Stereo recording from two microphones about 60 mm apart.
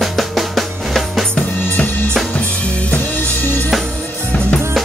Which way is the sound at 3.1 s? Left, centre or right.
Left.